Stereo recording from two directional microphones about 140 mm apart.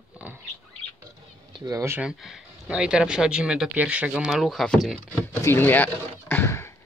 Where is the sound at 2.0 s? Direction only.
Centre (ahead or behind).